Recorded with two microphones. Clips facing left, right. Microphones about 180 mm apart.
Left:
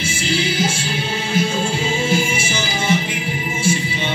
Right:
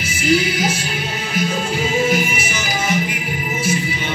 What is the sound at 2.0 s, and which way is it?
Music, 25° left (ahead or behind).